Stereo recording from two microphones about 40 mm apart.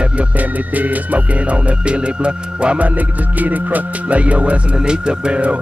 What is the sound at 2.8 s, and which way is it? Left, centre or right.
Music, right.